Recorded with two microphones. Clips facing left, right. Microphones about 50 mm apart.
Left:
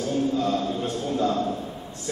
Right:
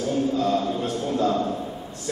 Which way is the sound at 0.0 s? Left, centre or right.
Centre.